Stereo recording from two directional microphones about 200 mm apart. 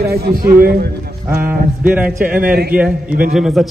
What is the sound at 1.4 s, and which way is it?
A man's voice, 10° right (ahead or behind).